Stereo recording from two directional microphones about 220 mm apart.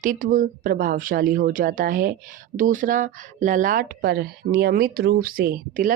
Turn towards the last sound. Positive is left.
turn(degrees=-40)  # may be behind; listen again after turning